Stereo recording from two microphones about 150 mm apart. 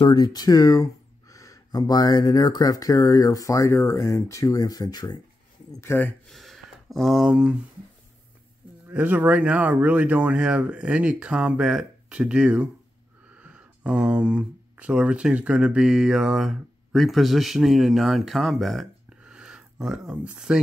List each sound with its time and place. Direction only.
0.0 s speech: 30° left (ahead or behind); by 6.3 s 10° left (ahead or behind)
6.3 s a sound: centre (ahead or behind)
8.8 s speech: 10° right (ahead or behind)